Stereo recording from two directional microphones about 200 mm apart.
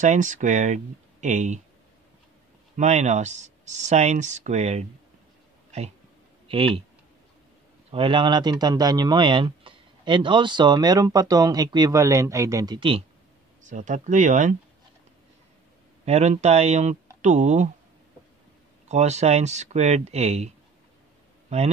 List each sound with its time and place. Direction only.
0.0 s speech: 40° right (ahead or behind)
2.7 s speech: 35° right (ahead or behind)
6.4 s speech: 25° right (ahead or behind)
7.9 s speech: 25° right (ahead or behind)
13.6 s speech: 40° right (ahead or behind)
16.1 s speech: 35° right (ahead or behind)
18.9 s speech: 35° right (ahead or behind)